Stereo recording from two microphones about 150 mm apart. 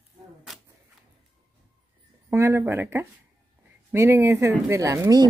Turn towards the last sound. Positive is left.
turn(degrees=-25)  # may be behind; listen again after turning